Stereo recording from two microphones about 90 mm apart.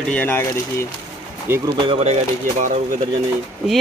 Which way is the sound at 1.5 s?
25° right (ahead or behind).